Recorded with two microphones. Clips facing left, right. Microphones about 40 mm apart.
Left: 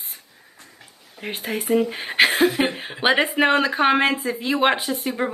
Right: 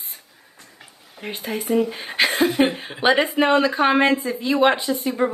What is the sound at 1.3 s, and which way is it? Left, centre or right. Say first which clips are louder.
A woman's voice: even; centre.